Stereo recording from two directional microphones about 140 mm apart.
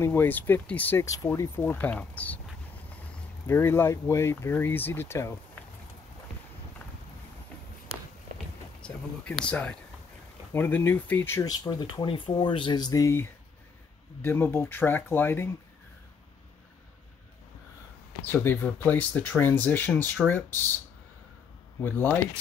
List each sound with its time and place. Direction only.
0.0 s speech: 15° left (ahead or behind)
1.0 s speech: 25° left (ahead or behind)
3.4 s speech: 15° left (ahead or behind)
8.8 s speech: 5° left (ahead or behind)
11.5 s speech: 30° left (ahead or behind)
18.2 s speech: 15° left (ahead or behind)
21.8 s speech: 15° left (ahead or behind)